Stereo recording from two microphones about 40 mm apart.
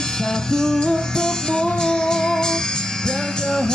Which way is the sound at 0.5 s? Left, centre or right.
Centre.